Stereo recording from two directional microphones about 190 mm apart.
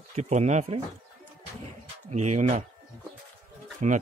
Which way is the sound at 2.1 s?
40° right (ahead or behind).